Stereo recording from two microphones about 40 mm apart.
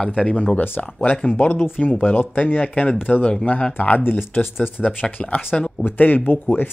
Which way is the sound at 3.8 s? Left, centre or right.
Left.